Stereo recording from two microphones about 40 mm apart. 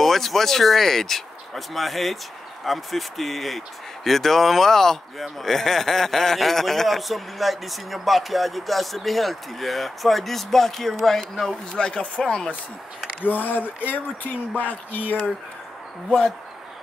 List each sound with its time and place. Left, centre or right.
0.0 s speech: centre
13.2 s speech: left